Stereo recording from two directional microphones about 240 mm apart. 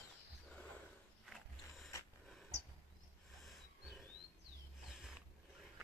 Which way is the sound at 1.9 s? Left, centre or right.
Centre.